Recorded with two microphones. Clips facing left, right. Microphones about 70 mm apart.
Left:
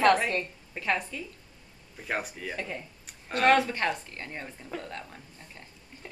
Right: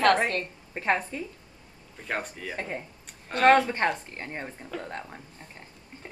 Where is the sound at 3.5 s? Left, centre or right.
Right.